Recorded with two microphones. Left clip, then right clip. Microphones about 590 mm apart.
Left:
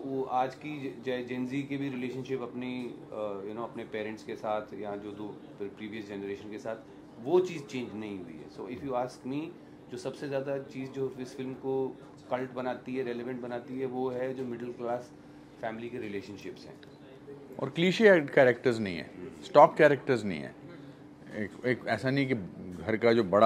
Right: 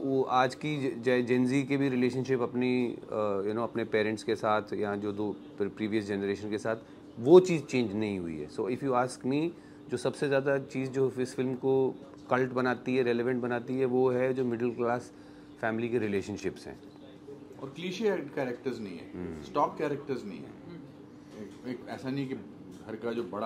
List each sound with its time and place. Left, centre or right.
0.1 s a sound: right
0.7 s a man's voice: right
17.7 s speech: left
21.6 s a man's voice: left